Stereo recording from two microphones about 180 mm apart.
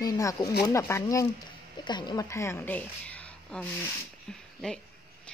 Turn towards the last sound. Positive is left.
turn(degrees=5)  # may be behind; listen again after turning